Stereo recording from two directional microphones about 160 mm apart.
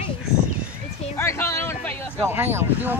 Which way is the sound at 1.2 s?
15° left (ahead or behind).